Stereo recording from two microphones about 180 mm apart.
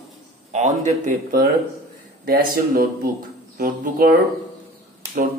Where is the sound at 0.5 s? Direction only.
40° right (ahead or behind).